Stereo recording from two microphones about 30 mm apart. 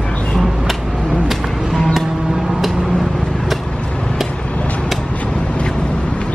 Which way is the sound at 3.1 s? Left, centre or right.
Centre.